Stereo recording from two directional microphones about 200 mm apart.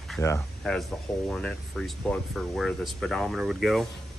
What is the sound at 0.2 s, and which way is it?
Speech, 15° left (ahead or behind).